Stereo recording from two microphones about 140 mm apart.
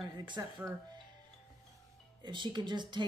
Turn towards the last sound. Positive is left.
turn(degrees=-30)  # may be behind; listen again after turning